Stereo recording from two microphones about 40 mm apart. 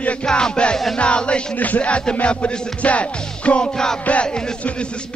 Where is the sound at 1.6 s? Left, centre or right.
Left; by 4.0 s centre.